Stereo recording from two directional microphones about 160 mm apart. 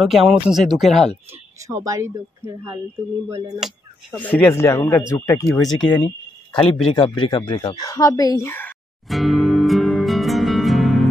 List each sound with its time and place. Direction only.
0.0 s speech: centre (ahead or behind)
1.3 s speech: 20° right (ahead or behind)
3.5 s speech: 5° right (ahead or behind)
4.2 s speech: 10° left (ahead or behind)
5.5 s speech: 5° left (ahead or behind)
6.5 s speech: 30° left (ahead or behind); by 8.7 s 15° left (ahead or behind)
9.0 s music: centre (ahead or behind)